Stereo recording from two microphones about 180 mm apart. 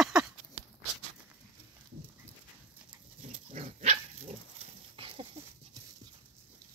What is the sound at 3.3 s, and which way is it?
Dog, 35° right (ahead or behind).